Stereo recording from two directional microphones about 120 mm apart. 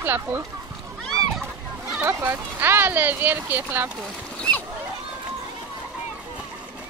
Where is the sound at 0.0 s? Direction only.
15° right (ahead or behind).